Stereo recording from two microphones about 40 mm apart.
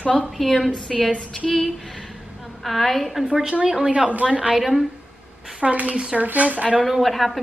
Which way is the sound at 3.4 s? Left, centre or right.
Right.